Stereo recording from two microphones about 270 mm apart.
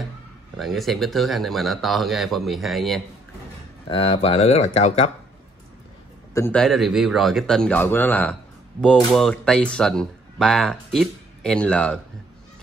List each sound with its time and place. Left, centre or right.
0.6 s speech: centre
3.8 s speech: centre
6.3 s speech: centre